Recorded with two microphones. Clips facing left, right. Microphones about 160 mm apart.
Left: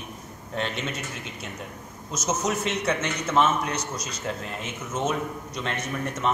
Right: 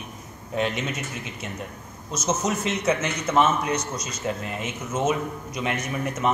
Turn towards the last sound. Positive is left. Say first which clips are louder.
# right 2 dB
turn(degrees=-5)  # may be behind; listen again after turning